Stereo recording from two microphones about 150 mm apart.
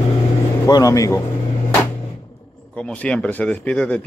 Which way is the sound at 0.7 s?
25° left (ahead or behind).